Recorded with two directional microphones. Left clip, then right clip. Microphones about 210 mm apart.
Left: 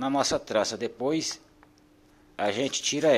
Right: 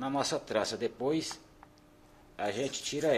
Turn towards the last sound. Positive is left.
turn(degrees=35)  # may be behind; listen again after turning